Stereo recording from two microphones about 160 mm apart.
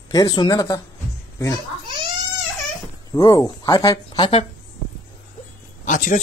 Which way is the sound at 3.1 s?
15° left (ahead or behind).